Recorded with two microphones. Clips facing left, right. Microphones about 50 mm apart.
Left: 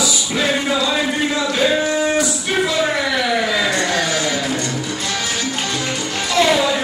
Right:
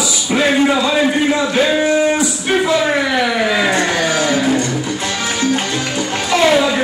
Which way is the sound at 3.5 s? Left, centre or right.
Right.